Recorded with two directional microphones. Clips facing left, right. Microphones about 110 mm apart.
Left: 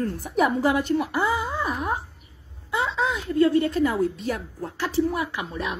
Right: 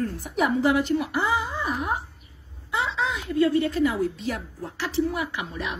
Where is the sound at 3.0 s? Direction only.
40° left (ahead or behind).